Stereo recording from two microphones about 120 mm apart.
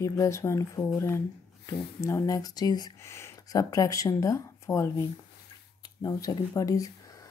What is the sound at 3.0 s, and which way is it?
Speech, 20° left (ahead or behind).